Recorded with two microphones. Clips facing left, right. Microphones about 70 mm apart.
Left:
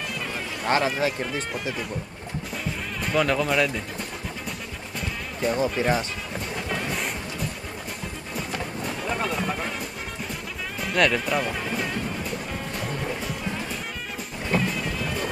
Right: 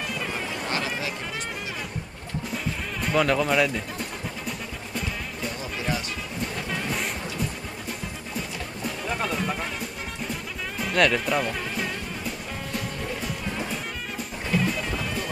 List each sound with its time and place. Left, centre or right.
0.1 s boat: centre
0.7 s speech: left
2.5 s music: centre
5.6 s speech: left
8.8 s speech: centre
10.8 s speech: centre